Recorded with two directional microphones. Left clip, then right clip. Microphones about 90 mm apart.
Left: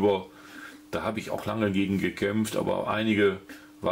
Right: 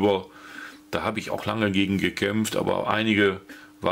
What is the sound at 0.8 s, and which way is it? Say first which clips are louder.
Speech: right 3 dB; 25° right (ahead or behind).